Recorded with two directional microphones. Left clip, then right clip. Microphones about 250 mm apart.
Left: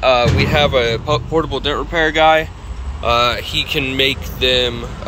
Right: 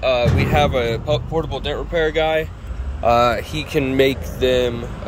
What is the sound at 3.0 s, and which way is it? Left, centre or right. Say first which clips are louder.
Speech: even; right.